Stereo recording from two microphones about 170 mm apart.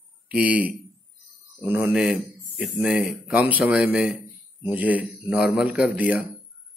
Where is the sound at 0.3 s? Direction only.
5° right (ahead or behind).